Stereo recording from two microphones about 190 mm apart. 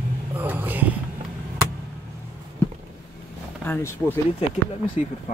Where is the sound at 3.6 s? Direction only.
10° left (ahead or behind).